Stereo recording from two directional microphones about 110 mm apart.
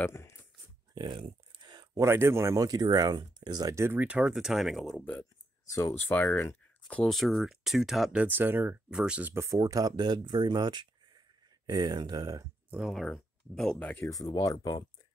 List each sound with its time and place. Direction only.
0.0 s speech: 25° left (ahead or behind)
0.9 s a sound: 45° right (ahead or behind)
2.0 s speech: 25° right (ahead or behind); by 4.9 s centre (ahead or behind)
4.9 s speech: 15° left (ahead or behind)
5.7 s speech: 25° left (ahead or behind)
7.1 s speech: centre (ahead or behind)
8.2 s speech: 15° right (ahead or behind)
9.3 s speech: 25° right (ahead or behind)
12.7 s speech: centre (ahead or behind)
14.1 s speech: 35° left (ahead or behind)